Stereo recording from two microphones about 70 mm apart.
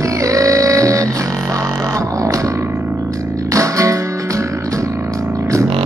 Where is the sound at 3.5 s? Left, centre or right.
Right.